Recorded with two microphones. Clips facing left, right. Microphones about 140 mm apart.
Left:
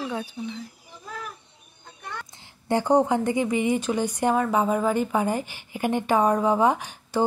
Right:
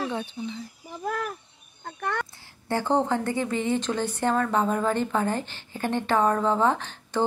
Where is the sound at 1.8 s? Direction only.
70° right (ahead or behind).